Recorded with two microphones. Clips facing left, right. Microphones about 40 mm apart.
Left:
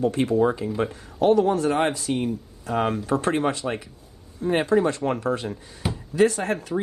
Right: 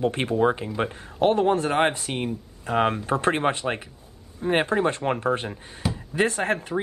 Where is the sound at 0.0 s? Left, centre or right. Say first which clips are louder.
Left 1 dB; right.